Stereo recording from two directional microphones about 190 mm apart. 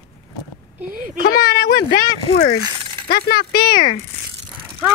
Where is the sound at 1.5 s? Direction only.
55° left (ahead or behind).